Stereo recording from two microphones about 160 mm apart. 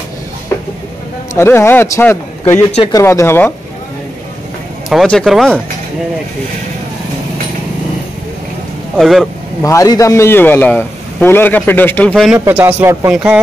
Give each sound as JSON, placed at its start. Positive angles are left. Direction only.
{"t": 1.3, "sound": "a man's voice", "side_deg": 15}
{"t": 4.8, "sound": "speech", "side_deg": 0}
{"t": 8.9, "sound": "speech", "side_deg": 0}
{"t": 9.6, "sound": "a man's voice", "side_deg": 20}
{"t": 12.4, "sound": "a man's voice", "side_deg": -15}